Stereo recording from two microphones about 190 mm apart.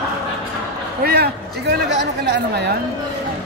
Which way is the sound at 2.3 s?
60° right (ahead or behind).